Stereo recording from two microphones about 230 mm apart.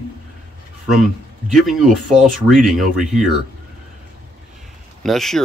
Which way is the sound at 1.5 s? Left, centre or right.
Centre.